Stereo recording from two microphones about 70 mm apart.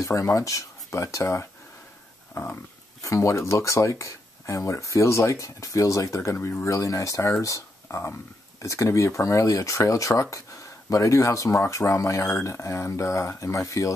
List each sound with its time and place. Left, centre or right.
0.0 s speech: left
2.3 s a sound: left
3.0 s speech: left
7.9 s speech: left
8.6 s speech: left